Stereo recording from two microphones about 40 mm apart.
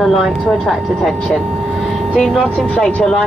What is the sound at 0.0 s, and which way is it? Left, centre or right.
Speech, centre.